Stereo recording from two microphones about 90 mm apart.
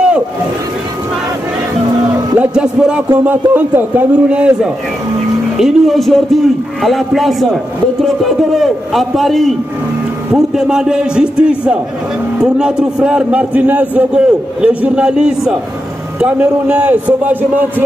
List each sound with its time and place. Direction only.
2.3 s a man's voice: 15° right (ahead or behind)
3.3 s a man's voice: 20° right (ahead or behind)
5.6 s a man's voice: centre (ahead or behind); by 17.8 s 20° right (ahead or behind)